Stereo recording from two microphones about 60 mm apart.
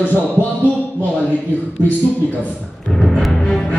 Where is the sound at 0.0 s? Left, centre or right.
Left.